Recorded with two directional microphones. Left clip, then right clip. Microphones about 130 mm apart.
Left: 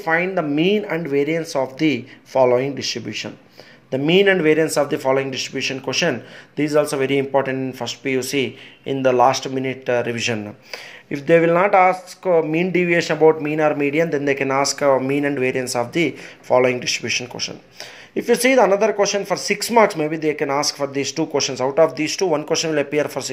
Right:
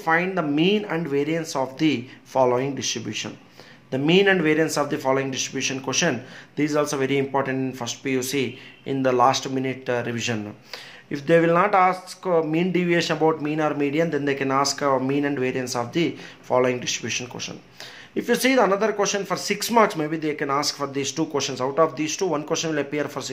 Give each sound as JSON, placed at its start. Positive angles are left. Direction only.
{"t": 0.0, "sound": "speech", "side_deg": 20}